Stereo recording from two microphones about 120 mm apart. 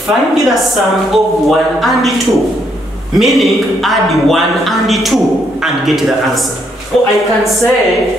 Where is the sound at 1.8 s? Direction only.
Centre (ahead or behind).